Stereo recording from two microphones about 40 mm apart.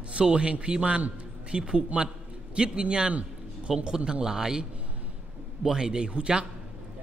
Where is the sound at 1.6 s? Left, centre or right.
Right.